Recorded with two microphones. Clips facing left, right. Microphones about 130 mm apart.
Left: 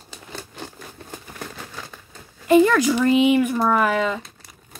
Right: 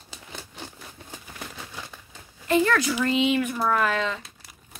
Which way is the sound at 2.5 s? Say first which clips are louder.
Left 7 dB; 15° left (ahead or behind).